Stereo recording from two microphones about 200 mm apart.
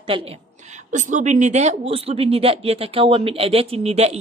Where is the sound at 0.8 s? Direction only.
40° right (ahead or behind).